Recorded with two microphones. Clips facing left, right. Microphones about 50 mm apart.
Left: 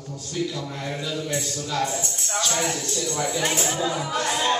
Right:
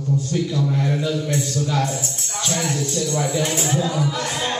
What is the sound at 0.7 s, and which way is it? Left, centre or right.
Speech, centre.